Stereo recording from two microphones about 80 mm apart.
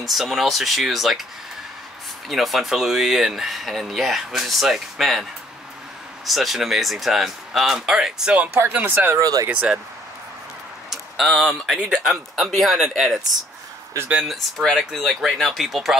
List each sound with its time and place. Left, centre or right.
0.0 s speech: centre
2.2 s speech: centre
6.2 s speech: centre
8.5 s speech: right
9.2 s speech: right
9.5 s speech: centre
10.9 s speech: centre
14.2 s speech: centre